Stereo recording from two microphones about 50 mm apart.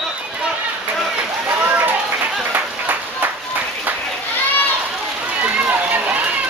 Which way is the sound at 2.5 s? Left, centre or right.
Right.